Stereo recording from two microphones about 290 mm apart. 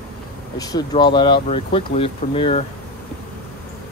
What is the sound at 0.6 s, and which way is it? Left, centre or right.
Speech, centre.